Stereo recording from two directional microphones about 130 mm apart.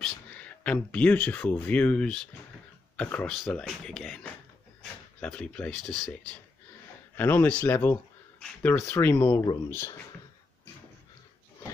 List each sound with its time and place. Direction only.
0.0 s speech: 10° left (ahead or behind)
7.2 s speech: 15° left (ahead or behind)
9.1 s speech: 35° left (ahead or behind)
9.7 s speech: 20° left (ahead or behind)